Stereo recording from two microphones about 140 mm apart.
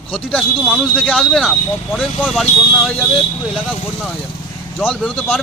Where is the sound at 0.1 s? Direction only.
5° left (ahead or behind).